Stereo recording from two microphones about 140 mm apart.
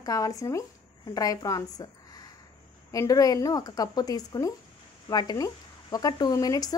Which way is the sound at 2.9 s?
25° left (ahead or behind).